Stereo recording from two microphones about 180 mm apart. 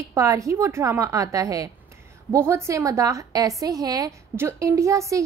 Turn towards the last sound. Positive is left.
turn(degrees=-15)  # may be behind; listen again after turning